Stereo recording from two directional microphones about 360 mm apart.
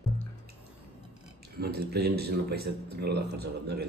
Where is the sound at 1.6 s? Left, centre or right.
Right.